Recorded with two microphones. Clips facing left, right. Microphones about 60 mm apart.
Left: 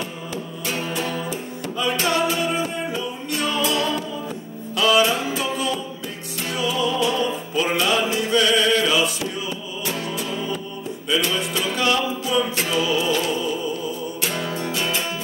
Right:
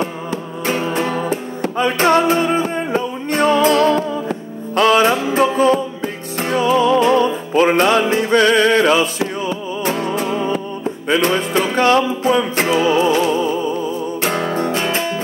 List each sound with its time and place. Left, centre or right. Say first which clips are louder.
0.7 s music: right 8 dB; right